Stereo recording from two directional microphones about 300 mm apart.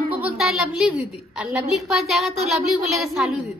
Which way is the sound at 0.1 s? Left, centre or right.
Centre.